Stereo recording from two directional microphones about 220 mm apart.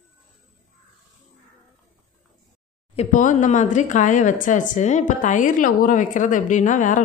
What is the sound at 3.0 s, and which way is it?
Speech, 35° left (ahead or behind).